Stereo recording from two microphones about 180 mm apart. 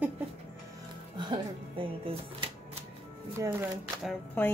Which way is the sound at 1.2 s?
25° right (ahead or behind).